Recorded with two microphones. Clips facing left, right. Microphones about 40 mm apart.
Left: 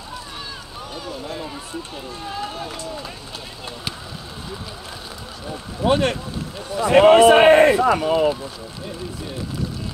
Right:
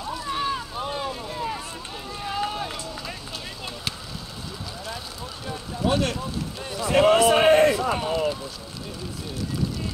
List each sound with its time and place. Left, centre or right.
0.7 s vehicle: right
2.0 s run: right
5.8 s a man's voice: left
8.1 s speech: left